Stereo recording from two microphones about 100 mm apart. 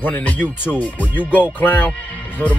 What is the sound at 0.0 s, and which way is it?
Speech, 15° left (ahead or behind).